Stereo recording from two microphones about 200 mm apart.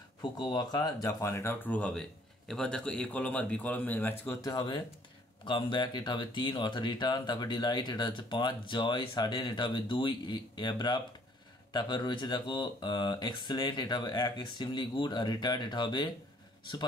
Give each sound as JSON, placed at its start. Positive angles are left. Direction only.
{"t": 0.2, "sound": "speech", "side_deg": 20}